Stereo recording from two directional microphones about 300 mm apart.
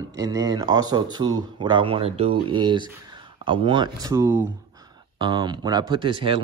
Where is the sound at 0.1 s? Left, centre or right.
Centre.